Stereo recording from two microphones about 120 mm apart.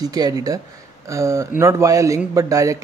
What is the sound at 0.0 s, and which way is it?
A man's voice, 30° right (ahead or behind).